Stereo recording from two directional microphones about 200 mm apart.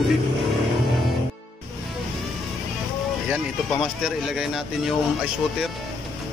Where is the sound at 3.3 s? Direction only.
5° right (ahead or behind).